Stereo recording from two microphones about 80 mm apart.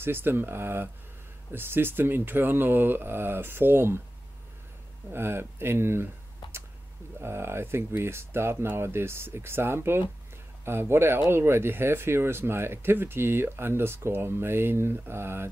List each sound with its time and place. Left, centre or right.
0.0 s speech: right
5.1 s speech: right
6.4 s a sound: left
7.2 s speech: right